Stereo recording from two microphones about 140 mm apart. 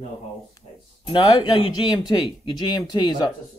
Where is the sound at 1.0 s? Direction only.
30° left (ahead or behind).